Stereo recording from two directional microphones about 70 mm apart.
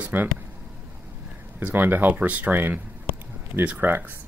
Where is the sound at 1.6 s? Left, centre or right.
Right.